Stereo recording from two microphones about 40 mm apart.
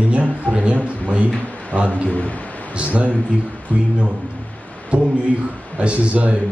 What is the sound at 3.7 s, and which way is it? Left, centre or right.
Speech, left.